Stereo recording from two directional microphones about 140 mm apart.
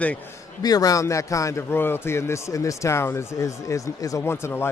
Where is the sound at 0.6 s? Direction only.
25° left (ahead or behind).